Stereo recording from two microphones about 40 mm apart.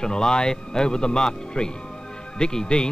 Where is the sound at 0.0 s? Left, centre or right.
Centre.